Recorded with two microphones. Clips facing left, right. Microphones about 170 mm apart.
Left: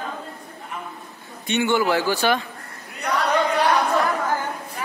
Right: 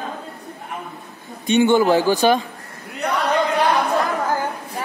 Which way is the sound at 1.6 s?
20° right (ahead or behind).